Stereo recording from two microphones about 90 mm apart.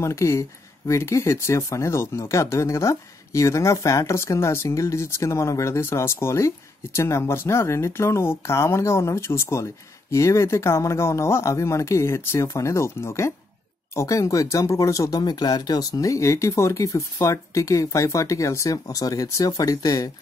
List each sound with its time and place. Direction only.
0.0 s speech: 30° left (ahead or behind)